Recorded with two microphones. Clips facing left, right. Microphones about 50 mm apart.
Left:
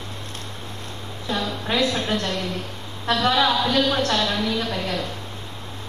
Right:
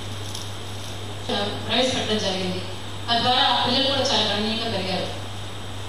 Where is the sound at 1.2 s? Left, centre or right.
Left.